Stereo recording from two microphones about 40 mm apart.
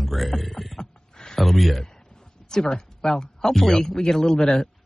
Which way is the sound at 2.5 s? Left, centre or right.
Centre.